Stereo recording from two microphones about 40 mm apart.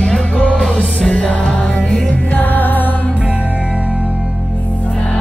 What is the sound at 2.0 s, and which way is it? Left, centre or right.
Music, left.